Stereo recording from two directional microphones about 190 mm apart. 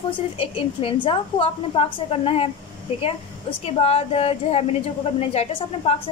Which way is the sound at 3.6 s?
30° left (ahead or behind).